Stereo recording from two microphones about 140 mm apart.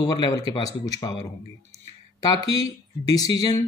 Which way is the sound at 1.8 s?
30° left (ahead or behind).